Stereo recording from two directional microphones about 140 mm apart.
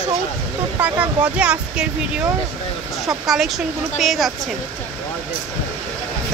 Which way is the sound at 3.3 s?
Centre (ahead or behind).